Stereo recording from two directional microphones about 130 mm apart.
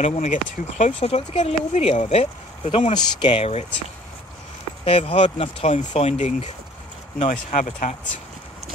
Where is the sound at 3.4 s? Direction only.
55° left (ahead or behind).